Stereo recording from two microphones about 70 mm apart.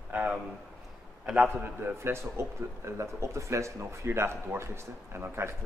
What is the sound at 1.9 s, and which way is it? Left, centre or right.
Speech, right.